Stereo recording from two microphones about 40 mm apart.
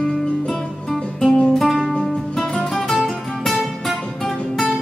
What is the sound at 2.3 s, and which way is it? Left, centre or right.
Music, centre.